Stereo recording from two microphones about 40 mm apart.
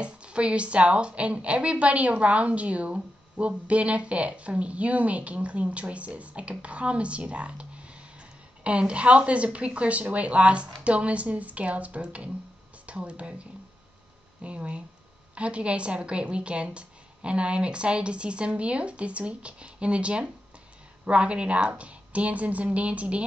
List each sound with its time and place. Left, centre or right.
0.0 s a woman's voice: right